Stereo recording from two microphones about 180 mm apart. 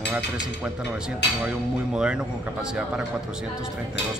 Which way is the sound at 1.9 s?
5° right (ahead or behind).